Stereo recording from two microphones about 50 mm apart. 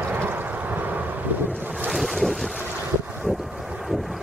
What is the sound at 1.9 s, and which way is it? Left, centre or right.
Boat, centre.